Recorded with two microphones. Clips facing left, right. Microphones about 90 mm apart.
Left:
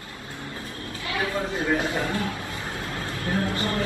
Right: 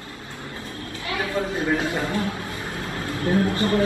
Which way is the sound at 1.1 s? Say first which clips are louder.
Right 2 dB; 25° right (ahead or behind).